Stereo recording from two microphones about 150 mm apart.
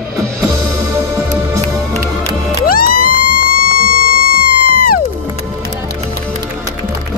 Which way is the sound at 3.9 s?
75° left (ahead or behind).